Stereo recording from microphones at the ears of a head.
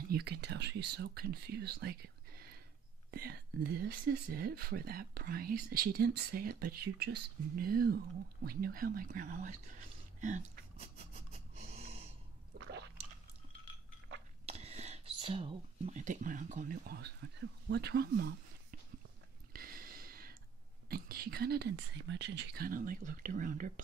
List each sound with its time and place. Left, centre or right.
0.0 s speech: right
10.5 s snort: right
12.5 s squish: right
14.0 s a sound: right
16.0 s speech: right
19.5 s a sound: right
20.9 s speech: right